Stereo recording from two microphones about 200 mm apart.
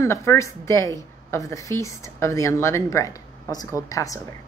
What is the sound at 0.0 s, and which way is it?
Speech, 15° left (ahead or behind).